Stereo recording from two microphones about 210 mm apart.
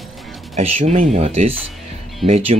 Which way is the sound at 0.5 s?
35° right (ahead or behind).